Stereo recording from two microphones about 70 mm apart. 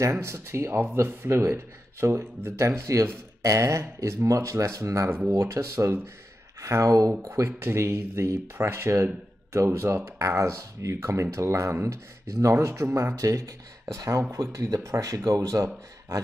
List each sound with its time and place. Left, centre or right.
0.1 s speech: right
7.2 s speech: right
10.1 s speech: right